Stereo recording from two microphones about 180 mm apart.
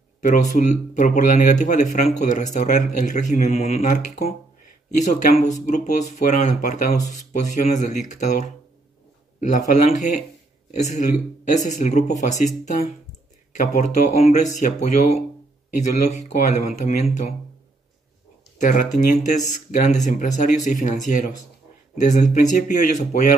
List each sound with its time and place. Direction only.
0.2 s speech: 45° left (ahead or behind)
15.9 s speech: 40° left (ahead or behind)
18.6 s speech: 45° left (ahead or behind)